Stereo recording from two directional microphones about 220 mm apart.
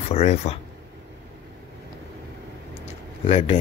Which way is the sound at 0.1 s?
30° left (ahead or behind).